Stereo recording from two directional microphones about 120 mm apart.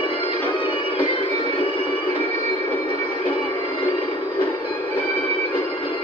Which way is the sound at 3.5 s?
45° left (ahead or behind).